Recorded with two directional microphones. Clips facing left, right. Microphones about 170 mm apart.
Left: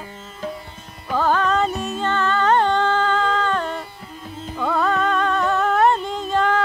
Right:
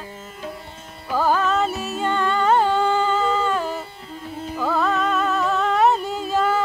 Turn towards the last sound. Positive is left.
turn(degrees=-5)  # may be behind; listen again after turning